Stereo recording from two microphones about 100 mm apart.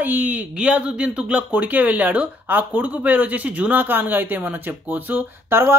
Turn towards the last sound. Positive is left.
turn(degrees=-25)  # may be behind; listen again after turning